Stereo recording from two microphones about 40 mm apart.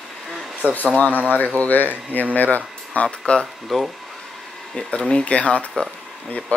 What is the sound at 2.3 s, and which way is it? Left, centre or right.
Speech, left.